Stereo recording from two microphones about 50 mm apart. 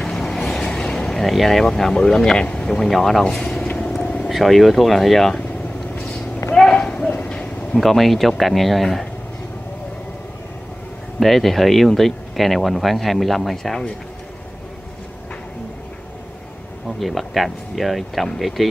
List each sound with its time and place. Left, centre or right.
0.0 s vehicle: centre
1.7 s speech: centre
2.4 s speech: left
2.9 s speech: centre
3.7 s vehicle: centre
4.3 s speech: centre
6.5 s clip-clop: centre
7.1 s a sound: left
7.7 s speech: centre
11.1 s speech: centre
17.0 s speech: centre